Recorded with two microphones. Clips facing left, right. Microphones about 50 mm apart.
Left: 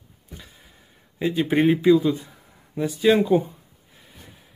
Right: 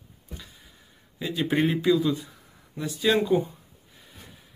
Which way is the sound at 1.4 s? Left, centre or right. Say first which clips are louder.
Left 3 dB; centre.